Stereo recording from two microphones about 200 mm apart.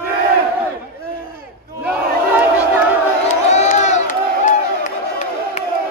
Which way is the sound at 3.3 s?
35° left (ahead or behind).